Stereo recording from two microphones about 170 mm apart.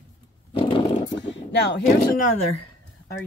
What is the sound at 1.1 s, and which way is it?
Speech, 90° left.